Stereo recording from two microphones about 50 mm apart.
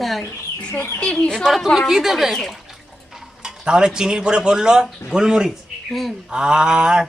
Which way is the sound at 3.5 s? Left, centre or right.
Centre.